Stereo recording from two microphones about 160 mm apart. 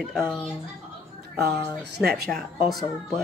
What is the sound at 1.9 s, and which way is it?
Speech, 75° right (ahead or behind).